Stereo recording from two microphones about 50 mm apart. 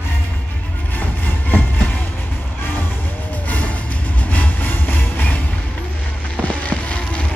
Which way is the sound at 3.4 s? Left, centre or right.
Left.